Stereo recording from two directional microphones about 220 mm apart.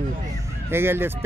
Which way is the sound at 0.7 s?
10° right (ahead or behind).